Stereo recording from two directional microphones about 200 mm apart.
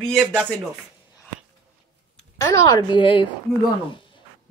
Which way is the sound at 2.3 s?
15° left (ahead or behind).